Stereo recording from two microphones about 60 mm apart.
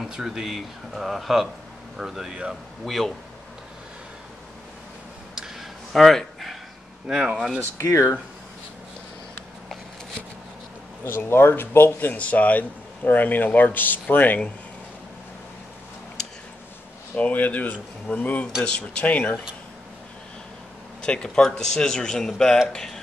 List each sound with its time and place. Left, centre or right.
0.0 s speech: centre
2.8 s speech: centre
5.3 s a sound: centre
5.9 s a sound: centre
7.3 s speech: centre
7.8 s speech: left
11.1 s a man's voice: left
17.2 s speech: left
21.0 s speech: centre